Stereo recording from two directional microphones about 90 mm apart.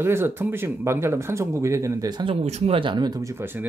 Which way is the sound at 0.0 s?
25° right (ahead or behind).